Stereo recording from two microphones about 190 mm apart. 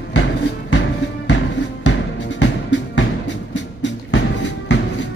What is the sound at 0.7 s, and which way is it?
Music, 70° left (ahead or behind).